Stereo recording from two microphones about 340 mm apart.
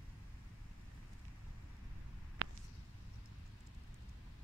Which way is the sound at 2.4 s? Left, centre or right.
Right.